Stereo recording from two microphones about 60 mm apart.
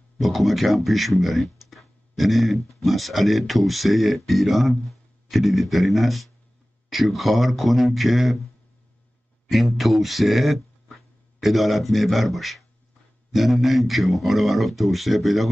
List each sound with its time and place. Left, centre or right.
0.2 s speech: centre
9.8 s speech: centre